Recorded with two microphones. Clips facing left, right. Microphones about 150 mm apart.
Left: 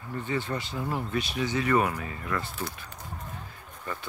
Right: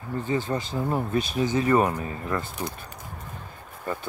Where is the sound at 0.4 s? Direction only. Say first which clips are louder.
Right 4 dB; 40° right (ahead or behind).